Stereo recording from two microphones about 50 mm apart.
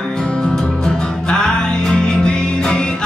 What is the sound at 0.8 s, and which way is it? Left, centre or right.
Music, centre.